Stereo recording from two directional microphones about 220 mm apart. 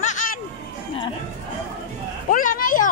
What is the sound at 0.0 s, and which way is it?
Music, 35° left (ahead or behind).